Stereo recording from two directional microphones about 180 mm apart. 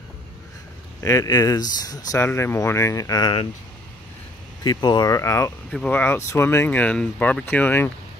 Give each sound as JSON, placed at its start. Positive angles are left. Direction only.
{"t": 1.0, "sound": "speech", "side_deg": 20}
{"t": 4.6, "sound": "speech", "side_deg": 25}